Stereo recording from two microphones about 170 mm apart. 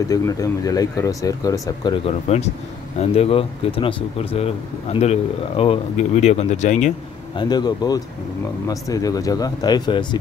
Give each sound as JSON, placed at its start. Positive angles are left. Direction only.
{"t": 0.1, "sound": "speech", "side_deg": 20}
{"t": 2.0, "sound": "speech", "side_deg": 40}
{"t": 7.3, "sound": "speech", "side_deg": 25}